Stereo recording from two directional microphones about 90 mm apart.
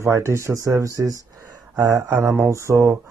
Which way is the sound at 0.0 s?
30° right (ahead or behind).